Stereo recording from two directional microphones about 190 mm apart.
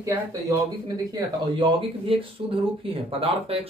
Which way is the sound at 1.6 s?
30° right (ahead or behind).